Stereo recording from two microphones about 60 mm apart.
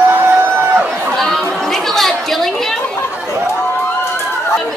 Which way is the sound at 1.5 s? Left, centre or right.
Centre.